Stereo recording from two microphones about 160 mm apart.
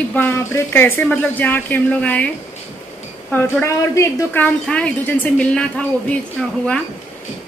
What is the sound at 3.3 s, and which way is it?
A woman's voice, 15° left (ahead or behind).